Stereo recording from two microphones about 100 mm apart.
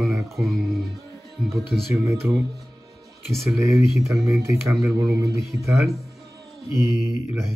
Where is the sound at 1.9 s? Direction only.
30° right (ahead or behind).